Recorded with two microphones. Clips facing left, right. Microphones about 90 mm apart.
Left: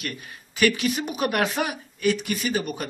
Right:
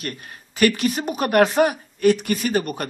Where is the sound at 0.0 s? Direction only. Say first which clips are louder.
Right 2 dB; 40° right (ahead or behind).